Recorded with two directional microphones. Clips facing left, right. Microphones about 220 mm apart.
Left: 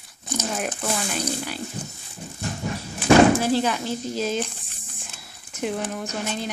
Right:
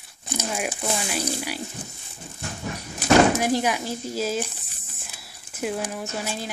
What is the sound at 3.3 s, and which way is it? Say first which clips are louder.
Speech: left 1 dB; 15° right (ahead or behind).